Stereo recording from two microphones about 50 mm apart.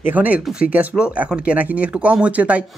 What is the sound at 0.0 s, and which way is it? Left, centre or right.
Speech, right.